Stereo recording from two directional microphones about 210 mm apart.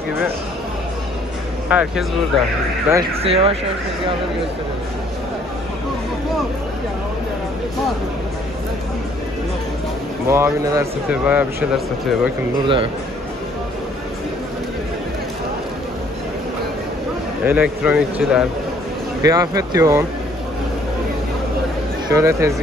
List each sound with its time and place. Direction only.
1.7 s speech: 5° right (ahead or behind)
3.2 s speech: 30° right (ahead or behind)
10.2 s speech: 15° right (ahead or behind)
12.6 s speech: 25° right (ahead or behind)
17.5 s speech: 5° right (ahead or behind)
19.2 s speech: 15° right (ahead or behind)
22.1 s speech: 15° right (ahead or behind)